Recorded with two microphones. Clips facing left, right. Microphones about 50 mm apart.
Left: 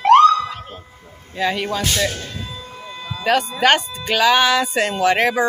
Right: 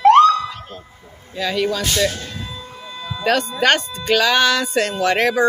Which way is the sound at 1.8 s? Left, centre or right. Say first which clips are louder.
Right 1 dB; centre.